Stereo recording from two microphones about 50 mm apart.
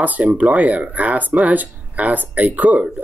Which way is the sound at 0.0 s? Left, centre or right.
Right.